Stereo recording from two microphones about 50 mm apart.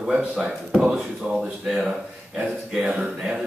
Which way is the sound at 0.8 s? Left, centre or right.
Centre.